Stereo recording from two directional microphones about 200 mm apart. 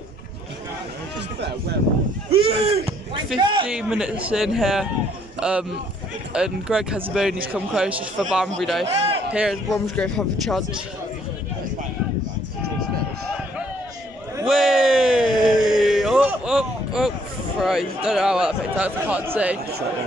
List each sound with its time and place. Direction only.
2.3 s a man's voice: 30° right (ahead or behind)
3.6 s a man's voice: 5° right (ahead or behind)
14.4 s a sound: centre (ahead or behind)
17.6 s a man's voice: centre (ahead or behind)